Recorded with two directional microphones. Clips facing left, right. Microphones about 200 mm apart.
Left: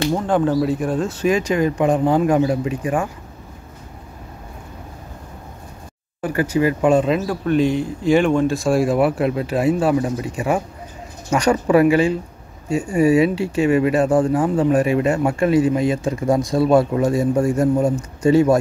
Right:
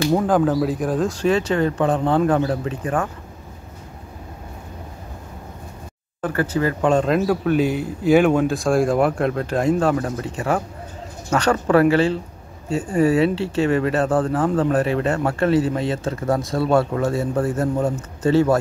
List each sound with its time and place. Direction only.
0.1 s speech: centre (ahead or behind)
6.2 s speech: 15° left (ahead or behind)